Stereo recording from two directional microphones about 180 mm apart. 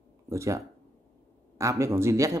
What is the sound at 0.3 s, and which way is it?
A man's voice, 15° right (ahead or behind).